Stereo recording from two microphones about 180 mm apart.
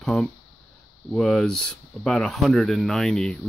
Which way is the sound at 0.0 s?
5° left (ahead or behind).